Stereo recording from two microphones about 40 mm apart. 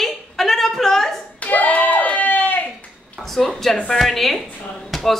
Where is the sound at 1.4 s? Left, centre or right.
Left.